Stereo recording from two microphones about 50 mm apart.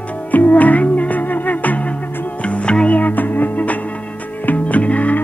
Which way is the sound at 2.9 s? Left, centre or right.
Left.